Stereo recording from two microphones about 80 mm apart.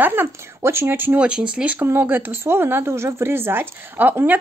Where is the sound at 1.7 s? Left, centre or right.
Right.